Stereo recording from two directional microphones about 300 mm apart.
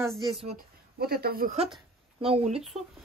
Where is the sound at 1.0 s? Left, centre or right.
Right.